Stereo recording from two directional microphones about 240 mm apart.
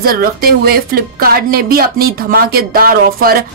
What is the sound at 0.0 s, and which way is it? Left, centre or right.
Speech, right.